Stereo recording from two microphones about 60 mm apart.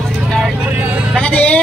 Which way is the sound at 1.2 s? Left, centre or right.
Centre.